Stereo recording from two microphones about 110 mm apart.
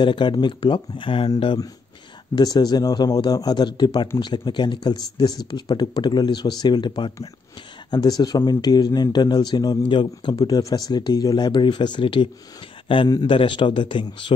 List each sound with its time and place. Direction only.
0.0 s speech: 45° left (ahead or behind)
2.3 s a man's voice: 35° left (ahead or behind)